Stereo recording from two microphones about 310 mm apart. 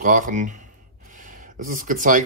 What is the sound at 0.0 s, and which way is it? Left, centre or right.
Speech, right.